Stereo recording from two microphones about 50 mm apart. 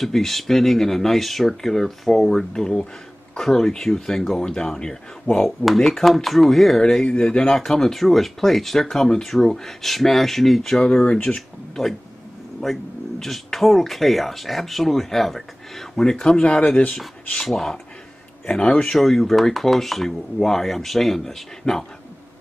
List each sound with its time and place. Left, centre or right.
0.0 s speech: centre
10.8 s speech: centre
17.4 s speech: centre